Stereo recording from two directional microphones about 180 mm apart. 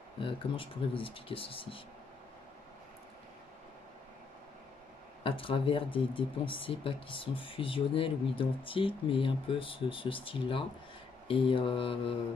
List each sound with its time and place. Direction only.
0.2 s speech: 30° left (ahead or behind)
5.2 s speech: 30° left (ahead or behind)